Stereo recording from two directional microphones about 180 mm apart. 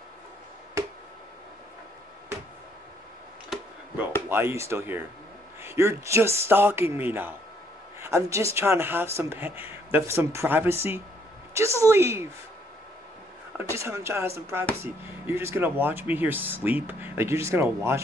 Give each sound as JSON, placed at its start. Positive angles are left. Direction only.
{"t": 3.4, "sound": "a sound", "side_deg": -10}
{"t": 4.3, "sound": "a man's voice", "side_deg": -15}
{"t": 13.7, "sound": "speech", "side_deg": -15}